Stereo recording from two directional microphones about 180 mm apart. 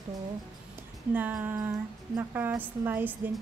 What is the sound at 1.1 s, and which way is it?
Speech, 10° right (ahead or behind).